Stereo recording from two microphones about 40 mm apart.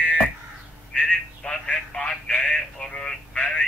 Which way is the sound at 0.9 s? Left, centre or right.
Left.